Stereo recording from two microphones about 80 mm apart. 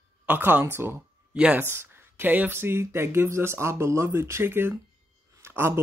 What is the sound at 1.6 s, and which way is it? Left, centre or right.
Speech, right.